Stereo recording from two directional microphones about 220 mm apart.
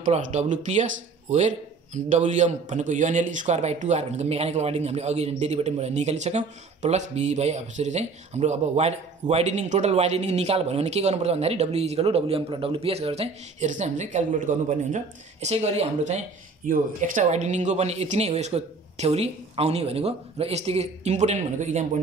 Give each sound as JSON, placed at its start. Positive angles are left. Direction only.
{"t": 0.0, "sound": "a man's voice", "side_deg": -30}